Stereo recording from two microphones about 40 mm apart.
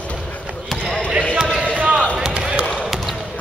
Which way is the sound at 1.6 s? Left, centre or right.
Right.